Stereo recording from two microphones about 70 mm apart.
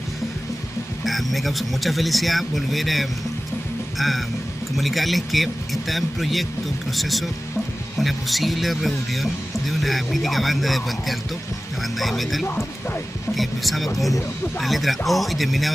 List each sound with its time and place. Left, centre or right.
1.0 s speech: centre
4.7 s speech: centre
12.4 s speech: left
13.3 s speech: centre